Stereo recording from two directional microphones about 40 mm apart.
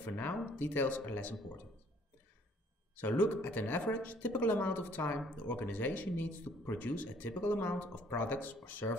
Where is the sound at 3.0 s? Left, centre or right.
Left.